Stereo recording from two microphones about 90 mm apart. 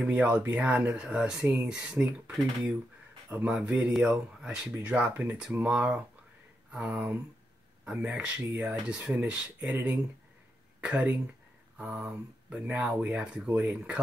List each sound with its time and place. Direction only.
0.0 s speech: 15° right (ahead or behind)